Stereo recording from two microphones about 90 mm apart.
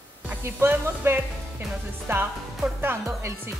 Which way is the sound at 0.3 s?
25° right (ahead or behind).